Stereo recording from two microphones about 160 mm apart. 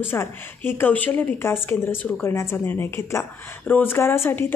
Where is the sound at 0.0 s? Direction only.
15° left (ahead or behind).